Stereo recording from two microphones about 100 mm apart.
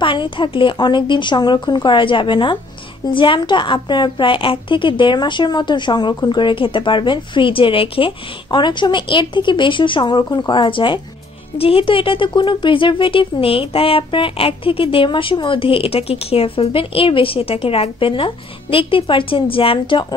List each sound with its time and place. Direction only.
0.0 s a woman's voice: 55° left (ahead or behind)
11.5 s speech: 70° left (ahead or behind)